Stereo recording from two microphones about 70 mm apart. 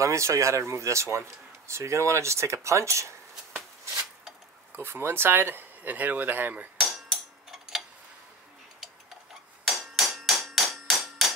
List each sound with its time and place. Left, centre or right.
0.0 s speech: right
4.7 s speech: right
6.8 s tick-tock: centre
9.7 s hammer: centre